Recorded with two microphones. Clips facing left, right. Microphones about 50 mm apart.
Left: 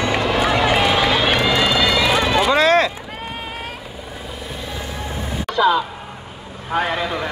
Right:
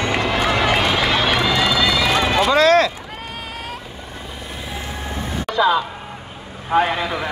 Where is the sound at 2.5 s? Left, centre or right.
Left.